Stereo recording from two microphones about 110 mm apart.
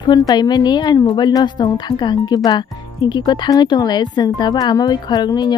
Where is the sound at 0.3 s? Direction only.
35° left (ahead or behind).